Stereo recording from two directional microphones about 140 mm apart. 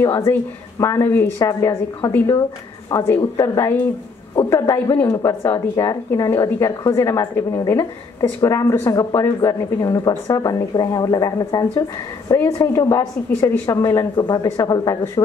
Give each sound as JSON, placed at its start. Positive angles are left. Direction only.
{"t": 0.0, "sound": "speech", "side_deg": 20}
{"t": 2.9, "sound": "speech", "side_deg": 25}